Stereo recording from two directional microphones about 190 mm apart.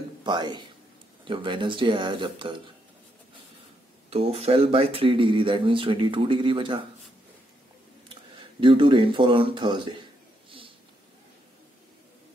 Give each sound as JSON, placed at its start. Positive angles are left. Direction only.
{"t": 0.2, "sound": "speech", "side_deg": -25}
{"t": 4.1, "sound": "speech", "side_deg": -30}
{"t": 8.1, "sound": "speech", "side_deg": -25}